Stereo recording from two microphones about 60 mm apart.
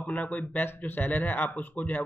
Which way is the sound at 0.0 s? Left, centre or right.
Left.